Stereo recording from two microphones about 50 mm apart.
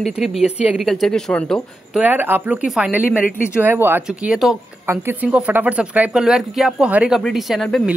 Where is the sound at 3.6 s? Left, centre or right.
Right.